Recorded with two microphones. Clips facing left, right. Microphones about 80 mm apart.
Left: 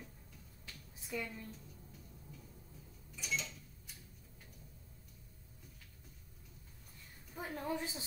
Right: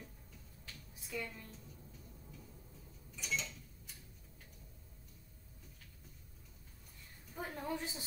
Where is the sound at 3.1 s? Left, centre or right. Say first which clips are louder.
Even; centre.